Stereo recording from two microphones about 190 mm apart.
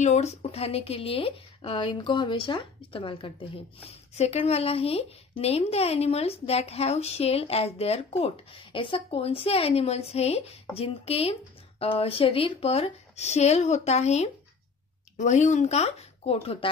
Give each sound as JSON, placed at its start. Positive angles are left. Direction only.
{"t": 0.0, "sound": "speech", "side_deg": 35}